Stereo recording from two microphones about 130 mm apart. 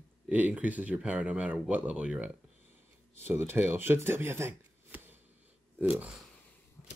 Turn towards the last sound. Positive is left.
turn(degrees=-15)  # may be behind; listen again after turning